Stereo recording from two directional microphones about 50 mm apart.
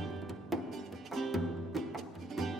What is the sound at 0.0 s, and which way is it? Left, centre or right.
Music, centre.